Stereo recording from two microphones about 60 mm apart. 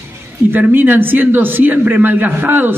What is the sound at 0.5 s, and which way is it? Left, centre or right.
A man's voice, right.